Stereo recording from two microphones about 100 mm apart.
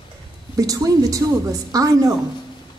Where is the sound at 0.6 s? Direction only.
40° right (ahead or behind).